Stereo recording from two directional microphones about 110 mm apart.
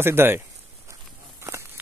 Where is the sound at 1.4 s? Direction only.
25° right (ahead or behind).